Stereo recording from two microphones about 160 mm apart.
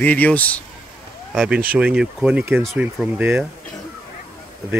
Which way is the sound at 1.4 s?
10° right (ahead or behind).